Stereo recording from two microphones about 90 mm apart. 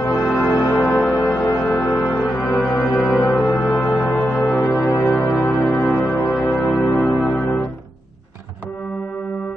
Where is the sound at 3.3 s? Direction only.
15° left (ahead or behind).